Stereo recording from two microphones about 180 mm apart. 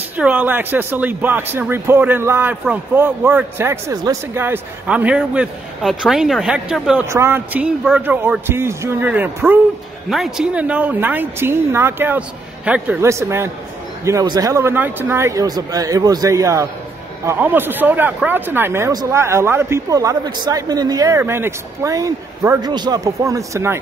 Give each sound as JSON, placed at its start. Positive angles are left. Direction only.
{"t": 0.2, "sound": "speech", "side_deg": -10}